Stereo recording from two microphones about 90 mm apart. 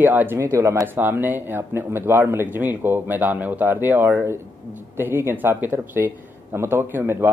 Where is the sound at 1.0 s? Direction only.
20° right (ahead or behind).